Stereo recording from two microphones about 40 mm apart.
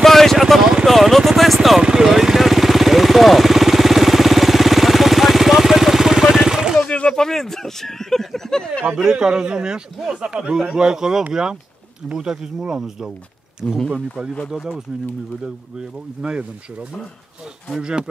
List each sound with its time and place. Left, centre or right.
0.0 s vehicle: centre
1.8 s vehicle: centre
6.4 s a sound: centre
6.8 s a sound: left
7.2 s a sound: centre
8.9 s a man's voice: centre
13.6 s speech: centre
14.5 s speech: centre
16.2 s speech: right
17.7 s speech: right